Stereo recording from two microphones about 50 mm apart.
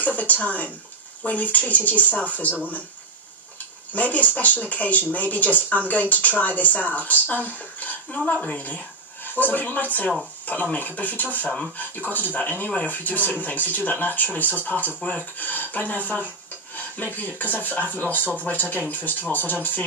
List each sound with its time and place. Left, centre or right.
0.0 s speech: left
3.9 s speech: left